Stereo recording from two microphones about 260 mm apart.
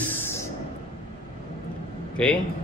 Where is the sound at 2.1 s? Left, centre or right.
Centre.